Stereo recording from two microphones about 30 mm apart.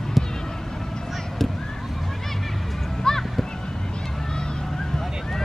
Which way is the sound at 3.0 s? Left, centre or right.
Centre.